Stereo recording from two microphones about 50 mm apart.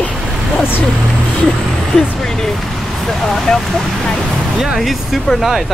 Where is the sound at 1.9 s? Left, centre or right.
Centre.